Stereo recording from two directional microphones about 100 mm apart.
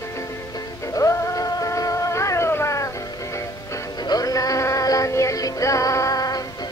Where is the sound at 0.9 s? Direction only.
35° left (ahead or behind).